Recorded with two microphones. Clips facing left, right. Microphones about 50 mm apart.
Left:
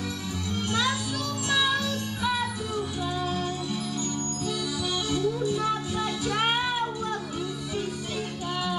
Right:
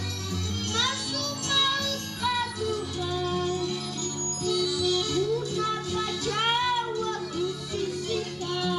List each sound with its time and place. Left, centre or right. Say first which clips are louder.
1.5 s music: left 2 dB; centre